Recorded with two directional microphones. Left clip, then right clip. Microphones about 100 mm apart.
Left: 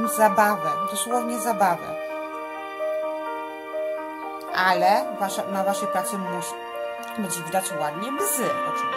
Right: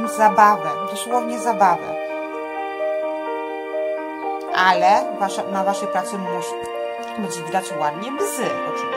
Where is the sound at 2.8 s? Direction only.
30° right (ahead or behind).